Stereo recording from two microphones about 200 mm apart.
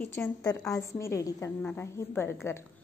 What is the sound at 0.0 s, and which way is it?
A woman's voice, 10° left (ahead or behind).